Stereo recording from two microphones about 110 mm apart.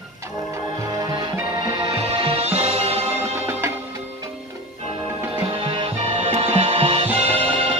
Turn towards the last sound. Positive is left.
turn(degrees=-60)  # may be behind; listen again after turning